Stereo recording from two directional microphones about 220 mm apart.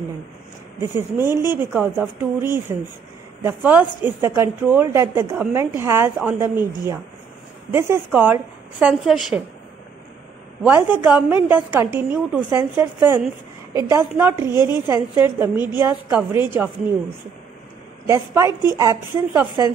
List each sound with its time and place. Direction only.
0.7 s a woman's voice: 10° right (ahead or behind)
10.6 s a woman's voice: 10° right (ahead or behind)
14.5 s a woman's voice: 20° left (ahead or behind)
14.9 s a woman's voice: 15° right (ahead or behind)
18.0 s a woman's voice: 15° right (ahead or behind)